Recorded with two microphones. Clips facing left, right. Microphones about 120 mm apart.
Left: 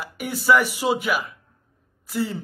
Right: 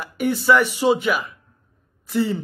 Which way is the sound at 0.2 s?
5° left (ahead or behind).